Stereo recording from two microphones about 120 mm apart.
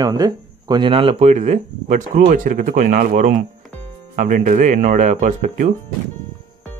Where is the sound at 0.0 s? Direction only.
35° right (ahead or behind); by 5.7 s 90° right.